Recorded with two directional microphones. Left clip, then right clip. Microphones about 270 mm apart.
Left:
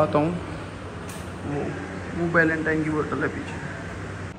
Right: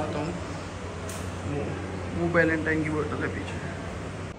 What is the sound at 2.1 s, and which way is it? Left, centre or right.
A man's voice, centre.